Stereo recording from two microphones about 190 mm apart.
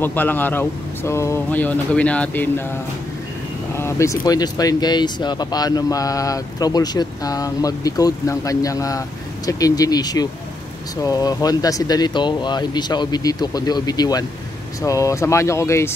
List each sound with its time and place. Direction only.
0.0 s speech: 10° left (ahead or behind)
3.7 s speech: 15° left (ahead or behind)